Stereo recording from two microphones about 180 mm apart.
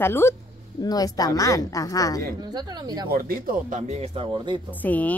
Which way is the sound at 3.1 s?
55° right (ahead or behind).